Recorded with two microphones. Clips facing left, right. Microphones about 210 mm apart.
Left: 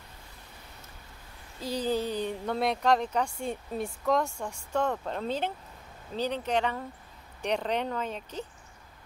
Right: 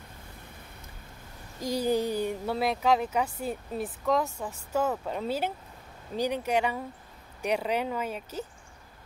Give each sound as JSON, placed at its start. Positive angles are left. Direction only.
{"t": 1.6, "sound": "speech", "side_deg": -15}